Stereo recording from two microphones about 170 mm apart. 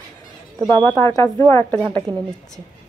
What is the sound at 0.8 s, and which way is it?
Speech, 15° left (ahead or behind).